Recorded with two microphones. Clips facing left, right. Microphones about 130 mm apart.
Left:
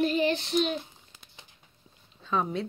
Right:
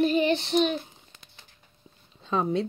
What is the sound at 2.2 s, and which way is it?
Speech, 30° right (ahead or behind).